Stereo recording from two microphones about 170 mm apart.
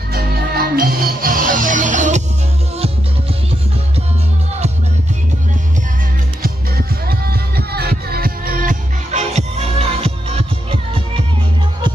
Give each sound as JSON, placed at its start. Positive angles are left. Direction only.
{"t": 0.1, "sound": "music", "side_deg": -65}
{"t": 7.1, "sound": "music", "side_deg": -65}